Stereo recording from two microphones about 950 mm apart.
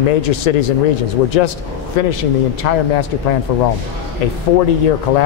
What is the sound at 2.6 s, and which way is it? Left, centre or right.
Speech, left.